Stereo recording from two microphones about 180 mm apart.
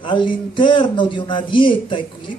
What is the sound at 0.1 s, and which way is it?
A man's voice, 25° left (ahead or behind).